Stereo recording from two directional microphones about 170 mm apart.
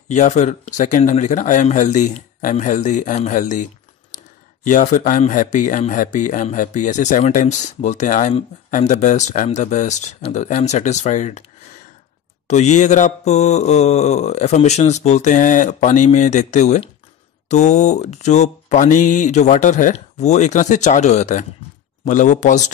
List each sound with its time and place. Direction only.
0.1 s mantra: 45° left (ahead or behind)
4.6 s mantra: 50° left (ahead or behind)
12.4 s mantra: 45° left (ahead or behind)